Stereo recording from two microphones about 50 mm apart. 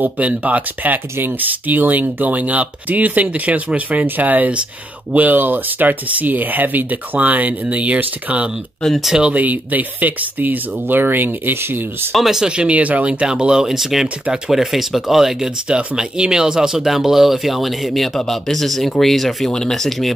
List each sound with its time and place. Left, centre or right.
0.0 s speech: right
12.2 s speech: centre; by 13.3 s right
13.3 s speech: centre